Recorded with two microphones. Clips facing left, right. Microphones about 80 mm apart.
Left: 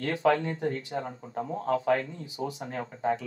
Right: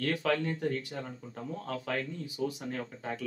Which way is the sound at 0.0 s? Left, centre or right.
Left.